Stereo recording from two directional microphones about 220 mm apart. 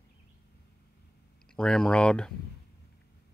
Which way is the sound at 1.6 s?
5° left (ahead or behind).